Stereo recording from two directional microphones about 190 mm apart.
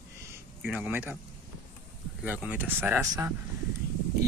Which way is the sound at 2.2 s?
10° right (ahead or behind).